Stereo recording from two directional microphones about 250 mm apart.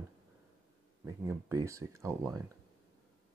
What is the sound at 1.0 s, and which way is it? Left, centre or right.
Speech, centre.